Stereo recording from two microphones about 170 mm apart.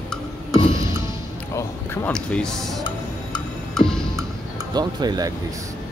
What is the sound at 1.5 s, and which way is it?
Music, 15° left (ahead or behind).